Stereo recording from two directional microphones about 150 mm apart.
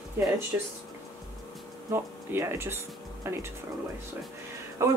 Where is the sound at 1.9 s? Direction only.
15° right (ahead or behind).